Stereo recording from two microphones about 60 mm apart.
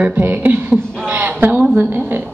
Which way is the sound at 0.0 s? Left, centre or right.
Right.